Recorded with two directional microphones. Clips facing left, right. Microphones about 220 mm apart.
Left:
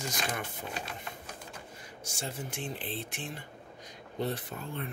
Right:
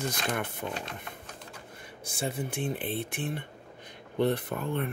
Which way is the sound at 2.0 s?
55° right (ahead or behind).